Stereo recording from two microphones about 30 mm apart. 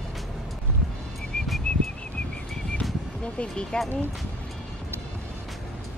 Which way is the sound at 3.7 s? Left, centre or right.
Left.